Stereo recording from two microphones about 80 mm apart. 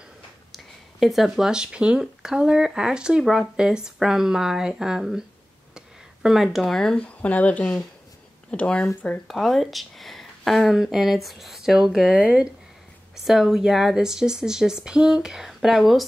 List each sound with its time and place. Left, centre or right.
0.5 s speech: centre
5.8 s a sound: centre
7.2 s speech: centre
9.3 s speech: centre